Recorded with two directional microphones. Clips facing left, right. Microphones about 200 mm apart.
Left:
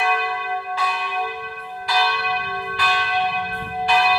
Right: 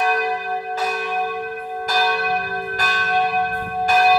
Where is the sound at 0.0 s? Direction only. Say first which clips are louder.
Right 3 dB; 40° right (ahead or behind).